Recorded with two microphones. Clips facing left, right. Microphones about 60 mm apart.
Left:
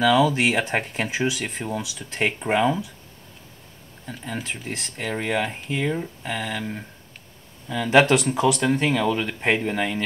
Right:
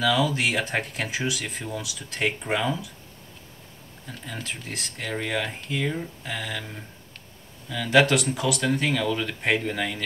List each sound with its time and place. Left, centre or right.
0.0 s speech: left
4.3 s speech: left